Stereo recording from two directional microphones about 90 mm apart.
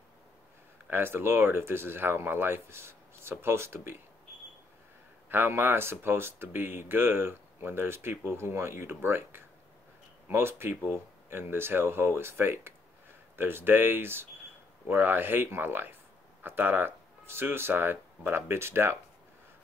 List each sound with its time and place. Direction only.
0.8 s speech: 25° right (ahead or behind)
5.3 s speech: 25° right (ahead or behind)